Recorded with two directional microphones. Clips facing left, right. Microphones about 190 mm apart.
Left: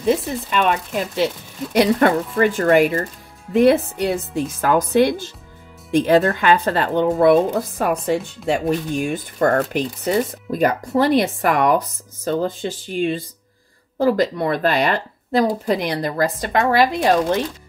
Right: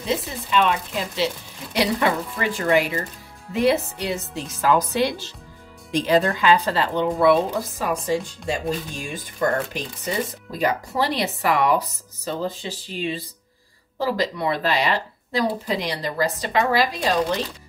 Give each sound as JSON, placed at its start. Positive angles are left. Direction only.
{"t": 0.0, "sound": "speech", "side_deg": 50}
{"t": 8.5, "sound": "speech", "side_deg": 65}
{"t": 10.6, "sound": "speech", "side_deg": 50}